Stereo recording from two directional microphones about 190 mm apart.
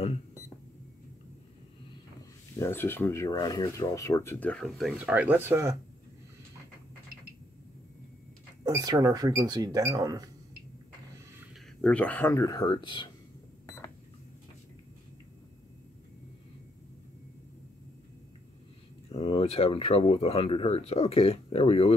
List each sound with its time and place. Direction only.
2.6 s speech: 10° left (ahead or behind); by 5.8 s 15° right (ahead or behind)
8.6 s speech: 20° right (ahead or behind)
11.8 s speech: 5° left (ahead or behind); by 13.1 s 25° left (ahead or behind)
19.0 s speech: 30° left (ahead or behind)